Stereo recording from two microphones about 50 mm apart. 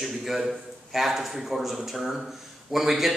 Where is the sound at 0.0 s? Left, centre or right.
Centre.